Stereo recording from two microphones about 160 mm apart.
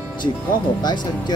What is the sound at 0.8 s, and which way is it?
Speech, 30° left (ahead or behind).